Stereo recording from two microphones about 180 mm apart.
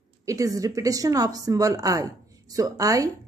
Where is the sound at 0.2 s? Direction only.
20° right (ahead or behind).